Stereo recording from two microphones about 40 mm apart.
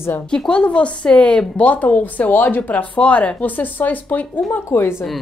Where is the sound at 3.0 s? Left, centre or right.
Left.